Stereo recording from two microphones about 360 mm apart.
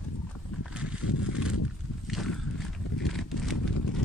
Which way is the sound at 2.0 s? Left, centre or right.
Centre.